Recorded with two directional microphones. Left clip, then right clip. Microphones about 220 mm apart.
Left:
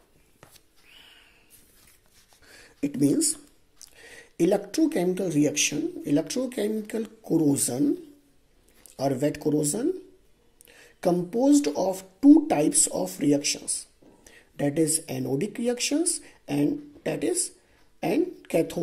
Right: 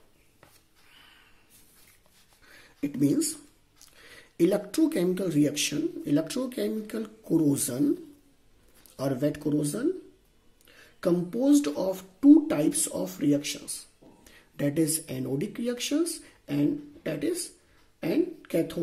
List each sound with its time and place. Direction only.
0.9 s a sound: centre (ahead or behind)
2.4 s a sound: 5° left (ahead or behind)
3.9 s speech: centre (ahead or behind)
11.0 s speech: 5° left (ahead or behind)
13.4 s speech: 30° right (ahead or behind)
13.7 s a woman's voice: centre (ahead or behind)